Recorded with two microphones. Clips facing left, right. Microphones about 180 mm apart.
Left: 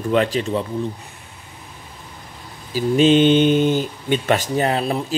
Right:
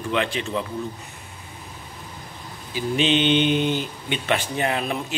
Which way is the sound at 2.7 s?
40° left (ahead or behind).